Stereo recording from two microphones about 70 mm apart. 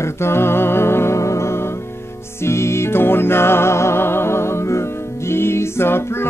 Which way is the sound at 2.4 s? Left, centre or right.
Left.